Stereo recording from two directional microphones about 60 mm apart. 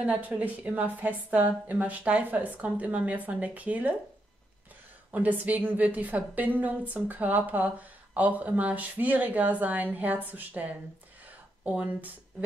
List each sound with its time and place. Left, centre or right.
0.0 s a woman's voice: right
5.1 s a woman's voice: right